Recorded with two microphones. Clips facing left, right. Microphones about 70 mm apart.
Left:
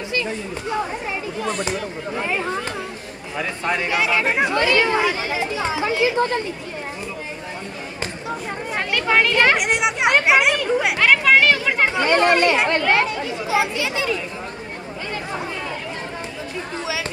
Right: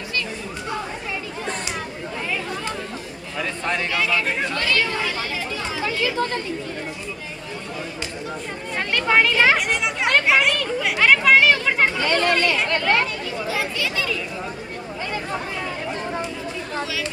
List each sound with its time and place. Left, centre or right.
2.2 s speech: left
3.3 s speech: centre
8.7 s a sound: centre
9.6 s speech: centre
11.0 s children playing: centre
11.9 s speech: left